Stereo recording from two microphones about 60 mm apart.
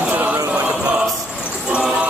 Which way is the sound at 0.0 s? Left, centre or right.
Right.